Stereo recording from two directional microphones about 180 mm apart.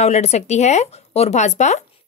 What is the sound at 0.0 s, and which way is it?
Speech, 40° left (ahead or behind).